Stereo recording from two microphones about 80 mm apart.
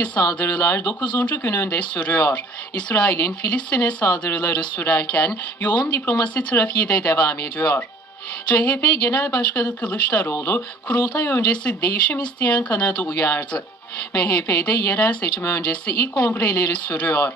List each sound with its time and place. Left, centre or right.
0.4 s speech: left
1.7 s speech: centre
10.3 s speech: left
10.9 s speech: left